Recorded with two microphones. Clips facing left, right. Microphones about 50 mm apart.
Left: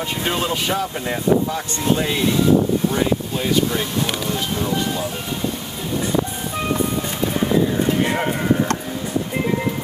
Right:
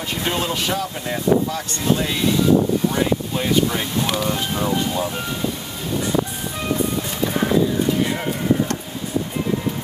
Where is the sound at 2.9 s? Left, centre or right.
Centre.